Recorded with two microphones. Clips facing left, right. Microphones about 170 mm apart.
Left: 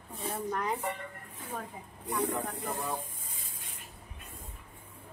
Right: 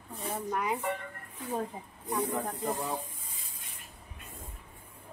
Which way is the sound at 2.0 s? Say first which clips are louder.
Even; 70° left (ahead or behind).